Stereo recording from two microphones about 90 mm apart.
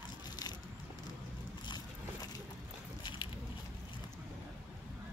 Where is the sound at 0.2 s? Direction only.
50° left (ahead or behind).